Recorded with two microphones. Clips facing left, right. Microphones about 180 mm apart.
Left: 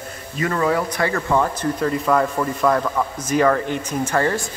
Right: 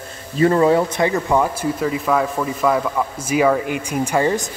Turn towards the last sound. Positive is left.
turn(degrees=-15)  # may be behind; listen again after turning